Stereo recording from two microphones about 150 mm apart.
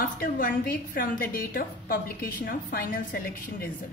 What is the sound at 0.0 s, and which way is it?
Speech, 70° left (ahead or behind).